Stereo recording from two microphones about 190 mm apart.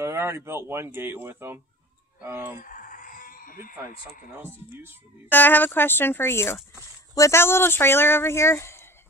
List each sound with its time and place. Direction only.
0.0 s speech: 15° right (ahead or behind)
2.6 s a sound: 45° left (ahead or behind)
5.3 s speech: 10° left (ahead or behind)